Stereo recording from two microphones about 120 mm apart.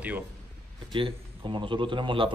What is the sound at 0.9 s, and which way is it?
A man's voice, 45° right (ahead or behind).